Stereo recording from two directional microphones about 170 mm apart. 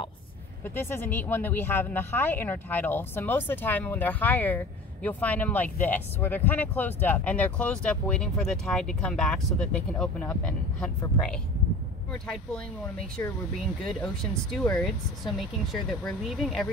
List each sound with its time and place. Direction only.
0.7 s speech: 15° left (ahead or behind)
12.1 s speech: 5° left (ahead or behind)
13.8 s speech: 5° left (ahead or behind)